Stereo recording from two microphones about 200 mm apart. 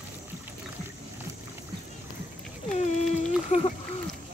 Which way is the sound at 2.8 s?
35° left (ahead or behind).